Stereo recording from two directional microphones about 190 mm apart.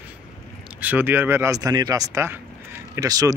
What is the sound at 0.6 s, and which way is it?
Speech, 10° right (ahead or behind).